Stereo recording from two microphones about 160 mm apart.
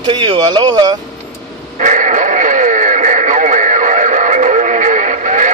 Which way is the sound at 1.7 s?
55° right (ahead or behind).